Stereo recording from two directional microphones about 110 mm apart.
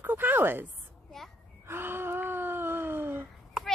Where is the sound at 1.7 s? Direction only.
20° right (ahead or behind).